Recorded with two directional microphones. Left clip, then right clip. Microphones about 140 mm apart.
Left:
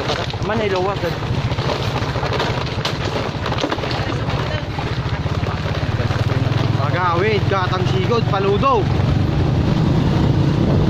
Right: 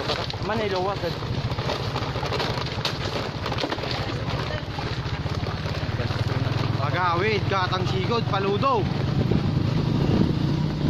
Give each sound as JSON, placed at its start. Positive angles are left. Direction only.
{"t": 0.1, "sound": "boat", "side_deg": -25}
{"t": 7.0, "sound": "vehicle", "side_deg": -45}